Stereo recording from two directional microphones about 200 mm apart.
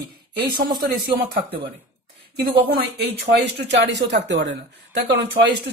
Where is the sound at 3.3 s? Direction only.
60° right (ahead or behind).